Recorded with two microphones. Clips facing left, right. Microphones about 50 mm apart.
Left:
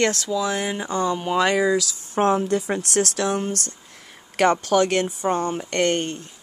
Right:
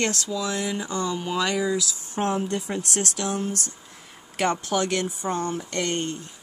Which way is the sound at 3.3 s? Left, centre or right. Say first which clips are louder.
Left 3 dB; left.